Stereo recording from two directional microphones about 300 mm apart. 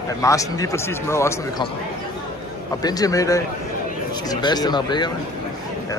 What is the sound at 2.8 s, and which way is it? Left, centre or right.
A man's voice, centre.